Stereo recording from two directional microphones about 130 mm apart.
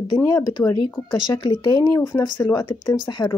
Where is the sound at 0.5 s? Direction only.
30° left (ahead or behind).